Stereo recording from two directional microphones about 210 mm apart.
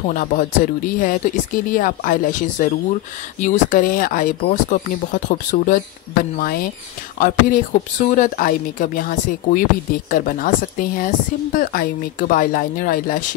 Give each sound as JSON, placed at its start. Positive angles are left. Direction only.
{"t": 0.1, "sound": "speech", "side_deg": 40}